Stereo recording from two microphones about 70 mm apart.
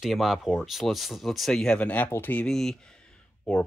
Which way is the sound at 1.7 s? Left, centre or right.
Left.